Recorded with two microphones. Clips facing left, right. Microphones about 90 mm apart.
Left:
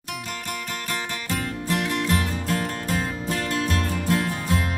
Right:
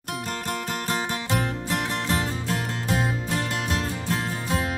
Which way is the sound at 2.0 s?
30° right (ahead or behind).